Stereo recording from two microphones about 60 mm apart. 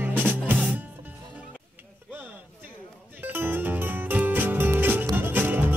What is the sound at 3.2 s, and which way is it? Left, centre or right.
Music, right.